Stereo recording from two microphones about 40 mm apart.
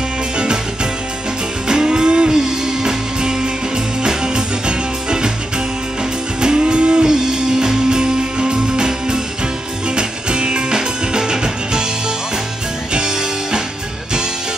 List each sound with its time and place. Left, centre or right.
1.7 s music: centre
6.4 s music: right
12.9 s music: centre